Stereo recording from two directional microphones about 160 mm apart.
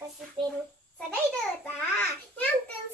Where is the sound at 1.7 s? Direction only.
10° left (ahead or behind).